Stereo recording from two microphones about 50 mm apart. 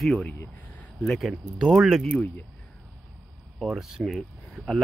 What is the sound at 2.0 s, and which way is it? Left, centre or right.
Speech, left.